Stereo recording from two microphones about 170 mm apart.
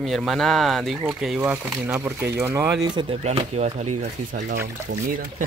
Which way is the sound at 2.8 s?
25° right (ahead or behind).